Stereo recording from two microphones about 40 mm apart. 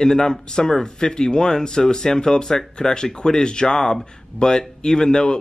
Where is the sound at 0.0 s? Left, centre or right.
Centre.